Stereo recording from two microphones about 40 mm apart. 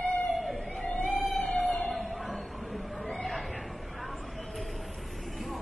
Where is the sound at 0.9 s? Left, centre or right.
Left.